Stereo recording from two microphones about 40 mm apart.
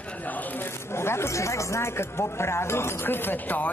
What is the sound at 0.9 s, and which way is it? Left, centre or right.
Chatter, left.